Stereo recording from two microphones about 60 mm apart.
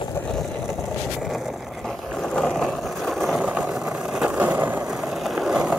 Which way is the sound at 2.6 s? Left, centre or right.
Centre.